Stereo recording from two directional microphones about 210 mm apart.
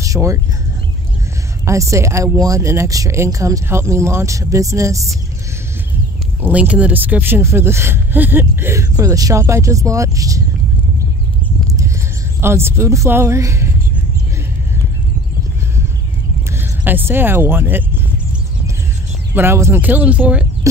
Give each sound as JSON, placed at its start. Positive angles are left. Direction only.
{"t": 0.0, "sound": "speech", "side_deg": -15}
{"t": 1.7, "sound": "speech", "side_deg": -15}
{"t": 6.4, "sound": "speech", "side_deg": -5}
{"t": 12.4, "sound": "speech", "side_deg": -10}
{"t": 16.8, "sound": "speech", "side_deg": -10}
{"t": 19.3, "sound": "speech", "side_deg": -10}